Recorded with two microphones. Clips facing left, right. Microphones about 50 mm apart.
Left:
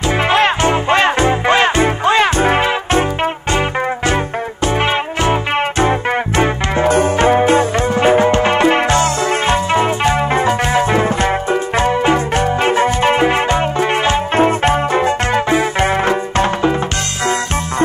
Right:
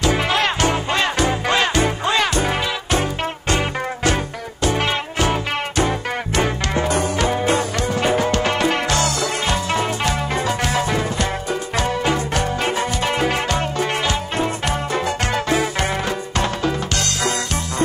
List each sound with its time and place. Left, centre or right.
0.0 s music: left